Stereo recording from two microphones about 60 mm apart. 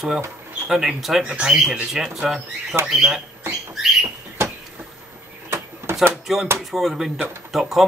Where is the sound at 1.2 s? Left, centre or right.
Centre.